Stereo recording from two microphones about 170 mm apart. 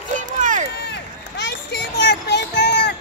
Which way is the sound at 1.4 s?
90° left.